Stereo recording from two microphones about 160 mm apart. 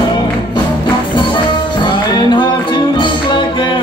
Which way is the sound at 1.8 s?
30° left (ahead or behind).